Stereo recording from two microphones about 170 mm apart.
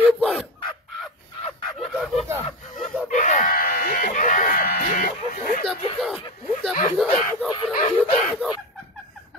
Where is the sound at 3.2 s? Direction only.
55° left (ahead or behind).